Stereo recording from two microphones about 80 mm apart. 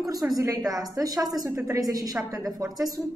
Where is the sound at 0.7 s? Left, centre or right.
Right.